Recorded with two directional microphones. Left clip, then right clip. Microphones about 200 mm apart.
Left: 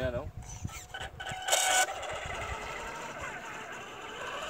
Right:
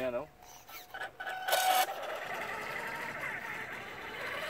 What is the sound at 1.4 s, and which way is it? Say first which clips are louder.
Sewing machine: left 1 dB; 20° left (ahead or behind).